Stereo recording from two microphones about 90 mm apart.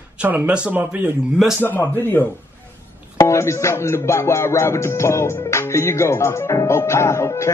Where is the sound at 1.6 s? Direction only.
25° left (ahead or behind).